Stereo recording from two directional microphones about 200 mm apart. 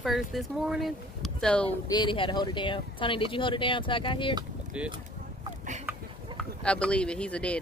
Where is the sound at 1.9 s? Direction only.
25° left (ahead or behind).